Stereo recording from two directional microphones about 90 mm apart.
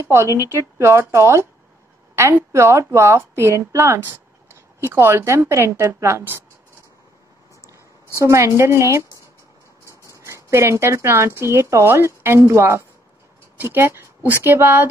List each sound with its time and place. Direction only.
0.5 s a woman's voice: 30° right (ahead or behind)
8.2 s a woman's voice: 30° right (ahead or behind)
10.1 s a woman's voice: 35° right (ahead or behind)